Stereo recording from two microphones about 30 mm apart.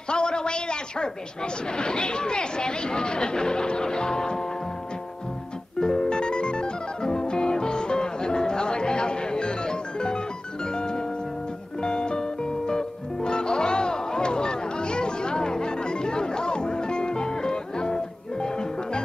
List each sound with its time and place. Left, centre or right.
0.1 s a man's voice: left
5.8 s music: left